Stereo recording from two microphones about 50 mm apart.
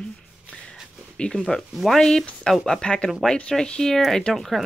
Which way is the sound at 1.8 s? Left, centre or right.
Centre.